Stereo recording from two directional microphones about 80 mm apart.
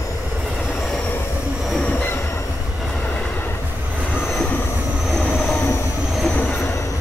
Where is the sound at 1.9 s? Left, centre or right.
Left.